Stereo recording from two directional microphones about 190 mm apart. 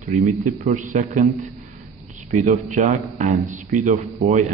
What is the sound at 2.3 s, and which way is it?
Speech, 40° right (ahead or behind).